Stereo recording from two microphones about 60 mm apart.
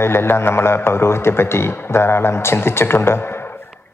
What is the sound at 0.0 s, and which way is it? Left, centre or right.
Speech, left.